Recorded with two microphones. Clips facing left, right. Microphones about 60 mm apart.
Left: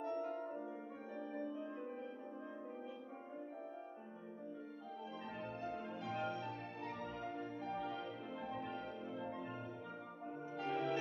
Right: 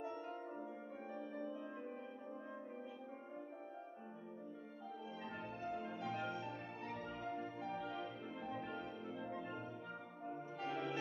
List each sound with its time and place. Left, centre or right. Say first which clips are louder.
5.6 s music: right 4 dB; centre